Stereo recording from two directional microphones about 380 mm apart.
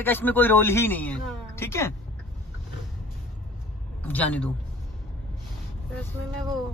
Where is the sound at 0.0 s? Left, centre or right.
Centre.